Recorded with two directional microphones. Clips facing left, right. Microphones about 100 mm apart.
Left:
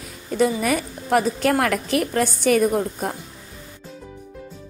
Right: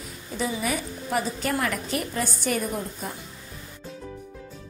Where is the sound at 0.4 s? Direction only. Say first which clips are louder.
Left 8 dB; 75° left (ahead or behind).